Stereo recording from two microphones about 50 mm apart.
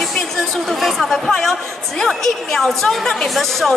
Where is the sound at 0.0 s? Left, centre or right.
Centre.